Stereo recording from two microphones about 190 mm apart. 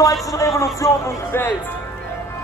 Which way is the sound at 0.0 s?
15° left (ahead or behind).